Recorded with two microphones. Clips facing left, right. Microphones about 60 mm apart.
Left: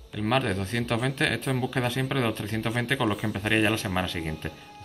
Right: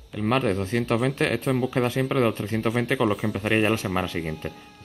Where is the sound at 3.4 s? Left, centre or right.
Centre.